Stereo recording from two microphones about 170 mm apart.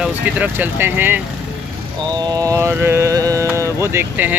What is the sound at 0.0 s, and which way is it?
Speech, 10° right (ahead or behind).